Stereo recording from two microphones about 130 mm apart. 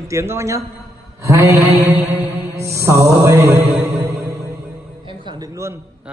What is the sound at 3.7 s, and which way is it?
Music, 15° right (ahead or behind).